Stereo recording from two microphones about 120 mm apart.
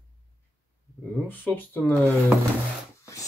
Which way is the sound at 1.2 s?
15° left (ahead or behind).